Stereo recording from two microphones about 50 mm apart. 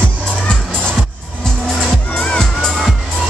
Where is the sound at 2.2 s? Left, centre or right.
Centre.